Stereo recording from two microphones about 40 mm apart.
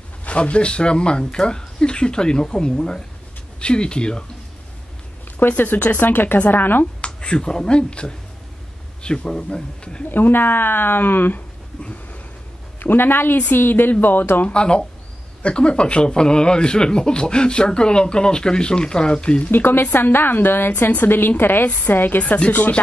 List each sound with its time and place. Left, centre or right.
0.2 s speech: left
5.4 s speech: left
7.0 s speech: left
10.0 s speech: left
11.8 s a sound: left
12.7 s speech: left
14.0 s speech: left
14.5 s speech: left
19.5 s speech: left
22.2 s speech: left